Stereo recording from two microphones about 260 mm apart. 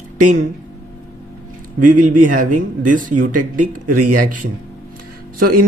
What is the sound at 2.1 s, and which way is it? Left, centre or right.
Speech, right.